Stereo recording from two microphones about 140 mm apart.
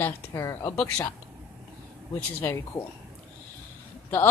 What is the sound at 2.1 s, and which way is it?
Speech, 15° left (ahead or behind).